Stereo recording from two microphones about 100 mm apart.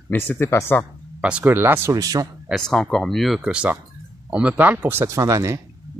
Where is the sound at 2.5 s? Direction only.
5° left (ahead or behind).